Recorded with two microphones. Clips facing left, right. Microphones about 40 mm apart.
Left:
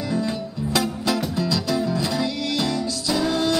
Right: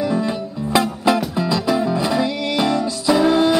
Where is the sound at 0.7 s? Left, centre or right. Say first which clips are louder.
Right 6 dB; right.